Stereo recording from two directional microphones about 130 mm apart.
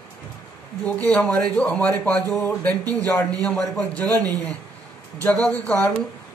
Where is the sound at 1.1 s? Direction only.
5° left (ahead or behind).